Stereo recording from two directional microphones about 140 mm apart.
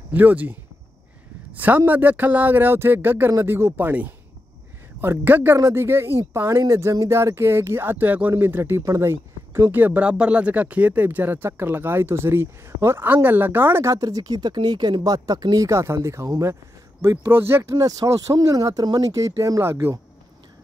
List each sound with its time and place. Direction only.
0.1 s a man's voice: 10° right (ahead or behind)